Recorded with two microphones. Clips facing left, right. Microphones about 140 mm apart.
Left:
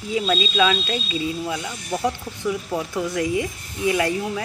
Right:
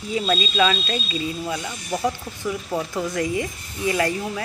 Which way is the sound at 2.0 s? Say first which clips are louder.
Even; 5° right (ahead or behind).